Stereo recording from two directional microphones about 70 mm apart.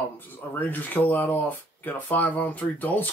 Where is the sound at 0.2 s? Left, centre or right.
Left.